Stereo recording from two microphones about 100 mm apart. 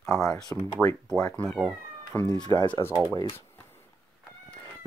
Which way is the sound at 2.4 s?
45° left (ahead or behind).